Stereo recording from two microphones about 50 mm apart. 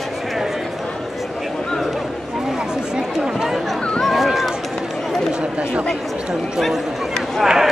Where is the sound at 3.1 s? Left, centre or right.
Centre.